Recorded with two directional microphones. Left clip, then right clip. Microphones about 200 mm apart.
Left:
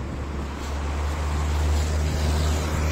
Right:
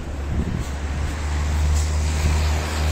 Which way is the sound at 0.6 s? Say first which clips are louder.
Even; 50° left (ahead or behind).